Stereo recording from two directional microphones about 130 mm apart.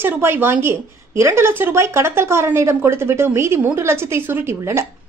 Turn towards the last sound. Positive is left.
turn(degrees=-20)  # may be behind; listen again after turning